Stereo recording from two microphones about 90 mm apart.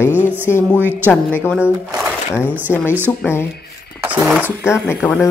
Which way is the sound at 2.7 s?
20° left (ahead or behind).